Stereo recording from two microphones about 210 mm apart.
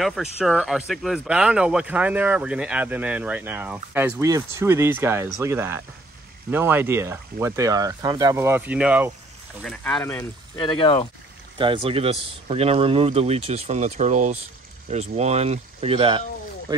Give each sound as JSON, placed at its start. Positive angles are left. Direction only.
{"t": 0.0, "sound": "speech", "side_deg": 0}
{"t": 10.6, "sound": "speech", "side_deg": 25}
{"t": 11.5, "sound": "speech", "side_deg": -25}